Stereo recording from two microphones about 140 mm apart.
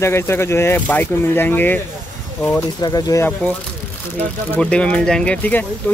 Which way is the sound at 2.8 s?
30° left (ahead or behind).